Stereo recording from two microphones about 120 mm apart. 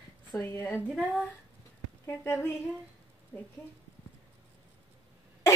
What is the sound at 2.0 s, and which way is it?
Speech, 20° left (ahead or behind).